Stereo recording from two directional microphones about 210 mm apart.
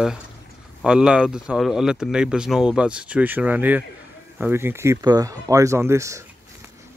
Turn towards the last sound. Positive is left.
turn(degrees=-15)  # may be behind; listen again after turning